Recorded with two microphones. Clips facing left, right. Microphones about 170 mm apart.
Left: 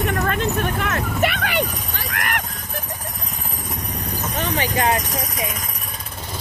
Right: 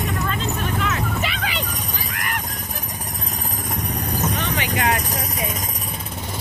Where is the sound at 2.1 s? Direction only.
60° left (ahead or behind).